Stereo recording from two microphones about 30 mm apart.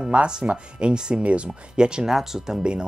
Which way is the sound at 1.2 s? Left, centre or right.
Right.